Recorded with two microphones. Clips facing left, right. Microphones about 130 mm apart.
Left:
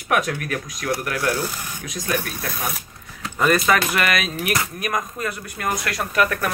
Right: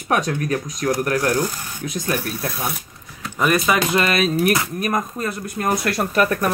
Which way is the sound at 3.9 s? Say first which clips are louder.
Right 4 dB; 30° right (ahead or behind).